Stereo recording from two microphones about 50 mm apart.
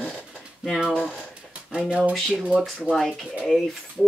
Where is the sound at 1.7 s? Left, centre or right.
Right.